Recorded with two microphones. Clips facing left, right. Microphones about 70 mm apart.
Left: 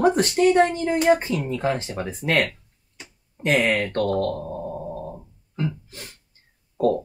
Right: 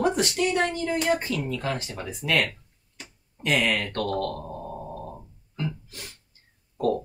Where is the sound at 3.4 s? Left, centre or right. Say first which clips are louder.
Left 4 dB; left.